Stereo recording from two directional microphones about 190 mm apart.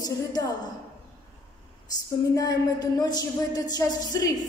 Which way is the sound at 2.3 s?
20° left (ahead or behind).